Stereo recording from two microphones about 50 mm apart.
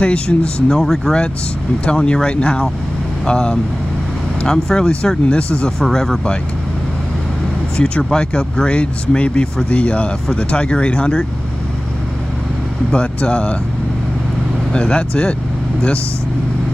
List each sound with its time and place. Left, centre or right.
0.0 s speech: left
0.7 s speech: centre
1.9 s speech: left
5.8 s speech: centre
7.7 s speech: left
12.9 s speech: left
14.7 s speech: left